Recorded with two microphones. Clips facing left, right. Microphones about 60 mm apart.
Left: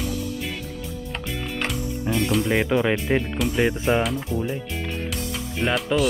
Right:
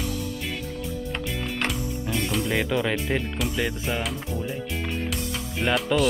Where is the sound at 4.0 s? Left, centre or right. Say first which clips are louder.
Left 5 dB; centre.